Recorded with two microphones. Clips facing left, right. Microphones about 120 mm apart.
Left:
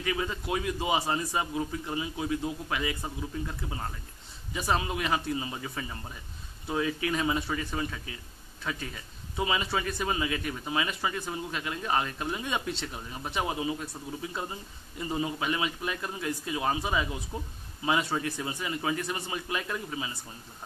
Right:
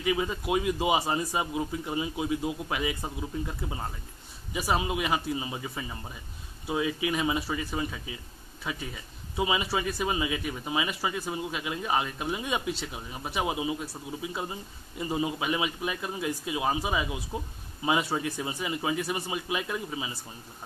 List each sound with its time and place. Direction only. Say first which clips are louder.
0.0 s a man's voice: right 3 dB; 20° right (ahead or behind)